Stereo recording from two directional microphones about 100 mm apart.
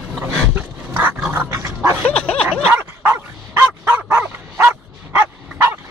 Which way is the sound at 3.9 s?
10° right (ahead or behind).